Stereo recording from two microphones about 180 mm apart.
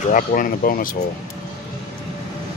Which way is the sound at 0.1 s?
50° left (ahead or behind).